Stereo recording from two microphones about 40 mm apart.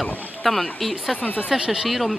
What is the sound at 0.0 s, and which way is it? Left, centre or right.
Speech, centre.